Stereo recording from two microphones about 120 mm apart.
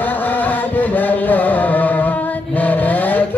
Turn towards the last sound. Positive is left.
turn(degrees=15)  # may be behind; listen again after turning